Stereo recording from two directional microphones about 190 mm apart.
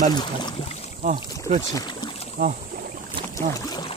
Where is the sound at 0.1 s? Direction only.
25° left (ahead or behind).